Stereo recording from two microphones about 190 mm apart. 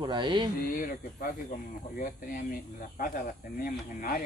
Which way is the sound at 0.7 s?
50° left (ahead or behind).